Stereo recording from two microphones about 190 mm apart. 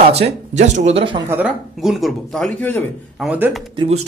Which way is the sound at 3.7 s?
30° right (ahead or behind).